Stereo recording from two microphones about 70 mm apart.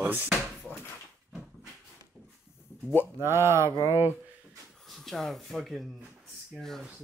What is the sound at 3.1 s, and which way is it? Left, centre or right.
Speech, right.